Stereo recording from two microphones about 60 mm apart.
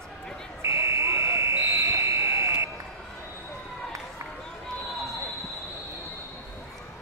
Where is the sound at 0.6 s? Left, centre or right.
Right.